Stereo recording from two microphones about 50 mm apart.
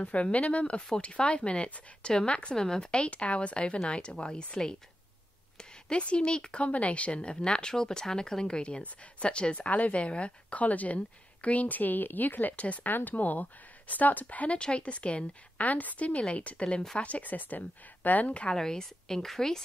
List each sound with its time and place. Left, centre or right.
0.0 s speech: left
18.5 s a woman's voice: centre